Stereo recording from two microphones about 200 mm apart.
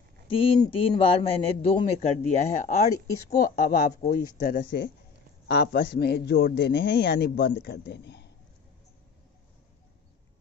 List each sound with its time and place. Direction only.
0.3 s a man's voice: 25° left (ahead or behind)
3.3 s a woman's voice: 45° left (ahead or behind)